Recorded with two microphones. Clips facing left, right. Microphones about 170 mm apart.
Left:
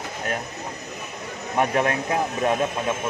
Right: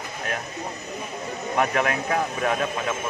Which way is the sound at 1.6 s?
30° left (ahead or behind).